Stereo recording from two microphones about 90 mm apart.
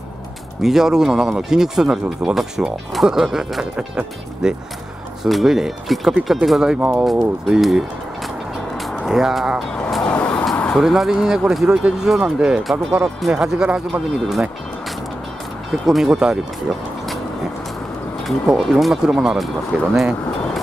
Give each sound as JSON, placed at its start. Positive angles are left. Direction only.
{"t": 0.6, "sound": "speech", "side_deg": -5}
{"t": 7.1, "sound": "speech", "side_deg": -5}
{"t": 10.0, "sound": "vehicle", "side_deg": 15}
{"t": 10.8, "sound": "speech", "side_deg": -5}
{"t": 15.8, "sound": "speech", "side_deg": -5}
{"t": 18.2, "sound": "speech", "side_deg": 0}